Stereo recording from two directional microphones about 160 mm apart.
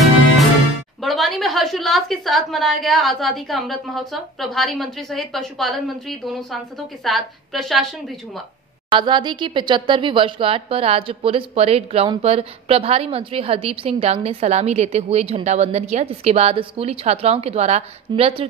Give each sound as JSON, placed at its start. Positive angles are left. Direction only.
{"t": 1.0, "sound": "a woman's voice", "side_deg": 0}
{"t": 8.9, "sound": "a woman's voice", "side_deg": -30}